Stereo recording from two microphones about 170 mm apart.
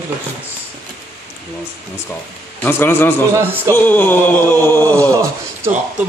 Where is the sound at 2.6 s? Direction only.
10° left (ahead or behind).